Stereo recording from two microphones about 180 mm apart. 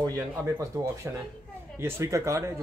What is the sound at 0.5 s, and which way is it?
Speech, 20° right (ahead or behind).